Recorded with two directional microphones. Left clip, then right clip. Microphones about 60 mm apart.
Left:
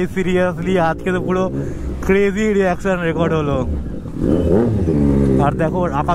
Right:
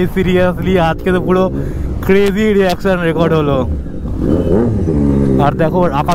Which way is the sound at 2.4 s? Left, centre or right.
Centre.